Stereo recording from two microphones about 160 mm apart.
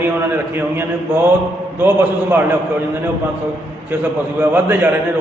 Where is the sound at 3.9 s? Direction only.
10° right (ahead or behind).